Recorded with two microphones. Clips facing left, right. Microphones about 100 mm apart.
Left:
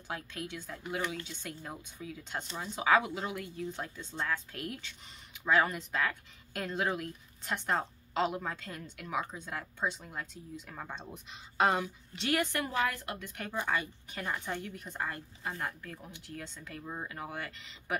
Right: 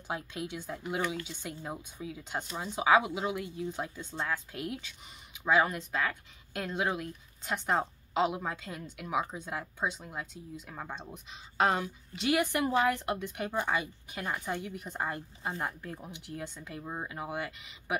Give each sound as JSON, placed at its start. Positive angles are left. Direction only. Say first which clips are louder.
{"t": 0.1, "sound": "speech", "louder": "right 3 dB", "side_deg": -15}
{"t": 12.5, "sound": "speech", "louder": "right 5 dB", "side_deg": -25}